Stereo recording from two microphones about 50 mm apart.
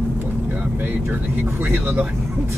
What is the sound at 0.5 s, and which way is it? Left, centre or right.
Vehicle, right.